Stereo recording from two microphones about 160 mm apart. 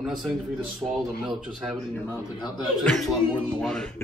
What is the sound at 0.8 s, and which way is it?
A man's voice, 15° right (ahead or behind).